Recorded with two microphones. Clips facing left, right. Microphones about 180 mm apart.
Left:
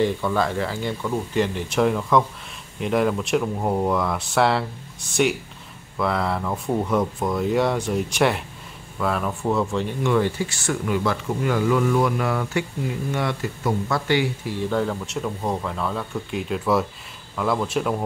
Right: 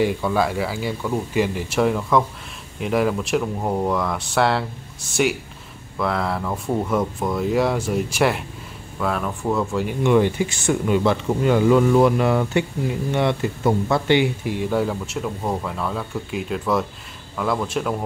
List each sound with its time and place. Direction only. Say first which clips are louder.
0.0 s speech: right 1 dB; 10° right (ahead or behind)
5.9 s speech: even; centre (ahead or behind)
10.0 s speech: right 5 dB; 20° right (ahead or behind); by 18.0 s centre (ahead or behind)